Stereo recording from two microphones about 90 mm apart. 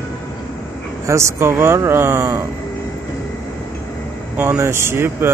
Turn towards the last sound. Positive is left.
turn(degrees=-25)  # may be behind; listen again after turning